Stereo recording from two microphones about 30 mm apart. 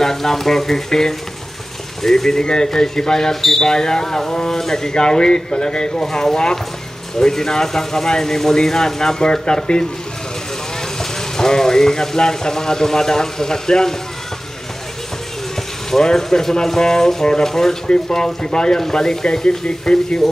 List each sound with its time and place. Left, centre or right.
0.0 s speech: centre
2.3 s speech: left
9.3 s speech: left
11.0 s speech: centre
16.0 s speech: centre
19.8 s speech: left